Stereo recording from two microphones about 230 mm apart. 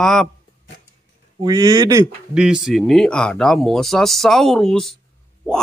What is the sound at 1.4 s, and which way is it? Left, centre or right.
Speech, centre.